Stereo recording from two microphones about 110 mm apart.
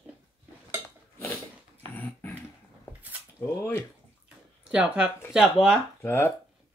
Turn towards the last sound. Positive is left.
turn(degrees=25)  # may be behind; listen again after turning